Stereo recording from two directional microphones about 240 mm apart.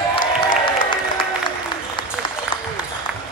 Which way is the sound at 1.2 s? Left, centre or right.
Centre.